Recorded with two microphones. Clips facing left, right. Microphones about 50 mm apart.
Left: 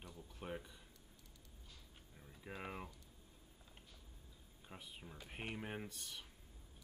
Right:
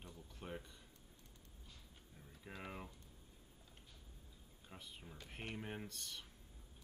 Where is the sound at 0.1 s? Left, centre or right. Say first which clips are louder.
Left 2 dB; centre.